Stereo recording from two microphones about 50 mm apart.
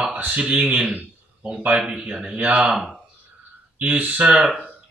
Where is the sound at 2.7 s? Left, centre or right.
Centre.